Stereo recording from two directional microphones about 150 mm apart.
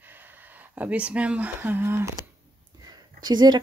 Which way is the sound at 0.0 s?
10° right (ahead or behind).